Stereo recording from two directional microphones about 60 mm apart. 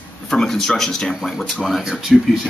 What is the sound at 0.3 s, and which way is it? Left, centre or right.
Speech, centre.